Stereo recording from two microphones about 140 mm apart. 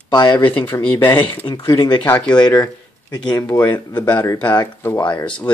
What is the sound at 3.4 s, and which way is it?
Speech, 25° left (ahead or behind).